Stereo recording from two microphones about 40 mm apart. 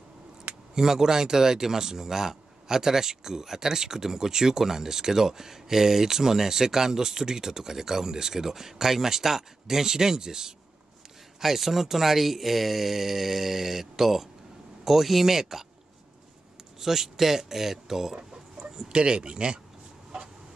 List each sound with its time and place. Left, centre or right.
0.7 s speech: centre
16.8 s speech: centre
18.9 s speech: right